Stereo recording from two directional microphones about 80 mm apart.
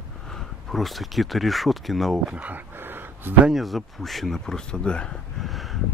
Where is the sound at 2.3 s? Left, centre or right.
Centre.